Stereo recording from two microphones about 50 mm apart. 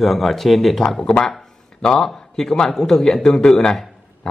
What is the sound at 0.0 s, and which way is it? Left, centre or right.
A man's voice, centre.